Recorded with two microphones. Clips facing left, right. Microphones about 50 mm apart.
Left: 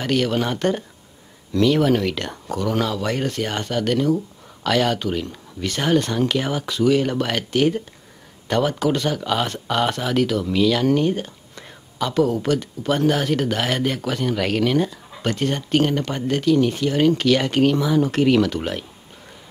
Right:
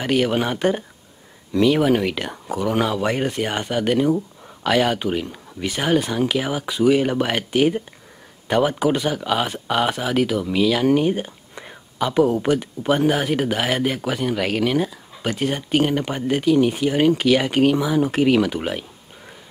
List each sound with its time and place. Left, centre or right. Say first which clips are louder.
0.0 s speech: right 1 dB; centre